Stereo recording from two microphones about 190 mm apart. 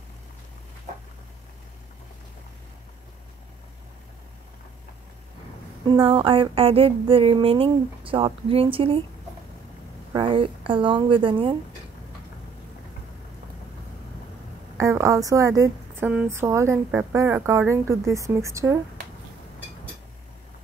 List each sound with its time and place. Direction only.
5.9 s speech: 30° right (ahead or behind)
10.1 s speech: 25° right (ahead or behind)
14.8 s speech: 15° right (ahead or behind)